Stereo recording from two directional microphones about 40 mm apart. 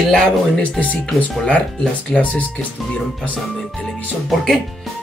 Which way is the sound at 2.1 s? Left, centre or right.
Left.